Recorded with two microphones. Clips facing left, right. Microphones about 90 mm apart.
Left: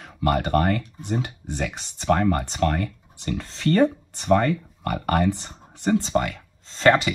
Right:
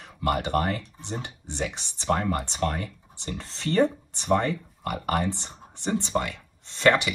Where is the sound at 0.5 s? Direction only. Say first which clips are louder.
Left 4 dB; 50° left (ahead or behind).